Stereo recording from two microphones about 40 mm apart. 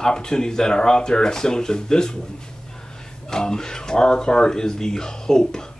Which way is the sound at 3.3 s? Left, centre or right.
Centre.